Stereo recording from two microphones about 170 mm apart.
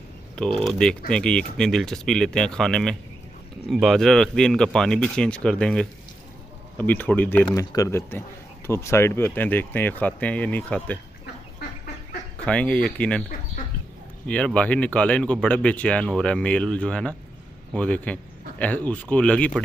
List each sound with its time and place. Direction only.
0.6 s speech: 5° left (ahead or behind)
12.4 s speech: 5° left (ahead or behind)
14.2 s speech: 5° left (ahead or behind)